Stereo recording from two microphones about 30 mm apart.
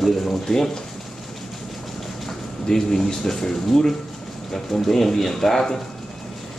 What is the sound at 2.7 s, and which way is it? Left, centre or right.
A man's voice, centre.